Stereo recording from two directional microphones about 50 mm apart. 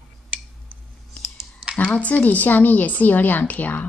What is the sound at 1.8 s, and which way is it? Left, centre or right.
A woman's voice, left.